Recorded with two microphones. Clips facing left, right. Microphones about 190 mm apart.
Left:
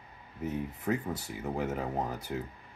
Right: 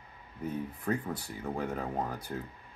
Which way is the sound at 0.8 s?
5° left (ahead or behind).